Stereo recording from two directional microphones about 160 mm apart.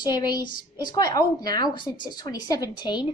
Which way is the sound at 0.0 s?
25° left (ahead or behind).